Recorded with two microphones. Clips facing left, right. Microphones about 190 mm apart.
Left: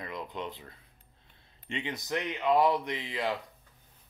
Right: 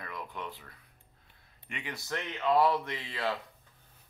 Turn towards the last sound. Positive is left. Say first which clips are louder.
# left 2 dB
turn(degrees=15)  # may be behind; listen again after turning